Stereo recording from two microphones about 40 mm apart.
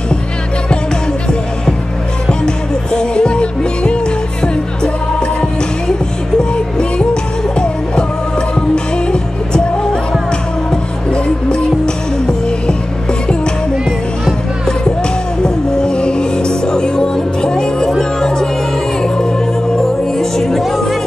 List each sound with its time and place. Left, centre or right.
2.2 s music: centre
10.7 s music: left
15.4 s music: left
19.8 s music: centre